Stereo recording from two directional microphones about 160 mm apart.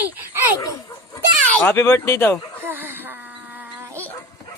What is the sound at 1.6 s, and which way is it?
Speech, 15° left (ahead or behind).